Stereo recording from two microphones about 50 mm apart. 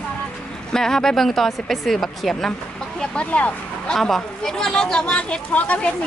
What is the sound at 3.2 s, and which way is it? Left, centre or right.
Speech, left.